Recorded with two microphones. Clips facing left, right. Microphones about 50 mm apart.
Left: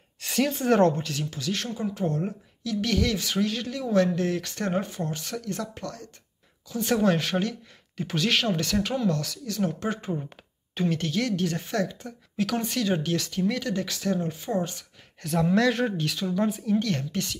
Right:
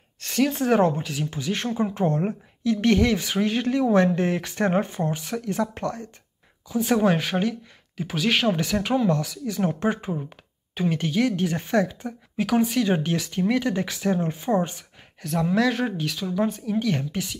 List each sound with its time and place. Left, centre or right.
0.2 s speech: centre
1.3 s a woman's voice: right
7.0 s speech: centre
9.6 s a woman's voice: right
10.3 s a woman's voice: centre
15.2 s speech: centre